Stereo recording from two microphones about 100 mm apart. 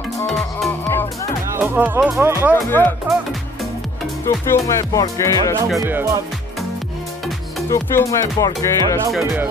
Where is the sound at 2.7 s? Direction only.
20° left (ahead or behind).